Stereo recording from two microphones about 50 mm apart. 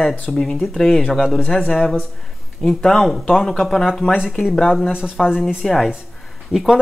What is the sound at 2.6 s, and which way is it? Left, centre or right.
Speech, centre.